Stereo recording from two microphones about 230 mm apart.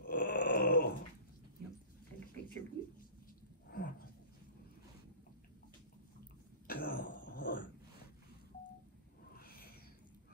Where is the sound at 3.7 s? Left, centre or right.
Left.